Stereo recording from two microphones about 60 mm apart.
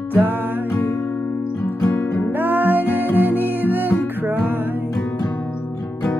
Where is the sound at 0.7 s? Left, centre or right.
Left.